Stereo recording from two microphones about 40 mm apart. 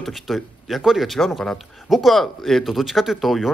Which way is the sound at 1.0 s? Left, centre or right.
Centre.